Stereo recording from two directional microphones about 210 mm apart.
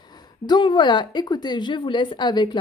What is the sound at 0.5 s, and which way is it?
A woman's voice, 20° left (ahead or behind).